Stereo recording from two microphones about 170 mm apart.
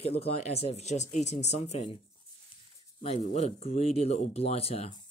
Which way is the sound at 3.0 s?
40° left (ahead or behind).